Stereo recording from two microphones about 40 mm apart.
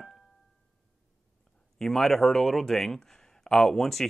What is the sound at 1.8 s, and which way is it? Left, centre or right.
Speech, centre.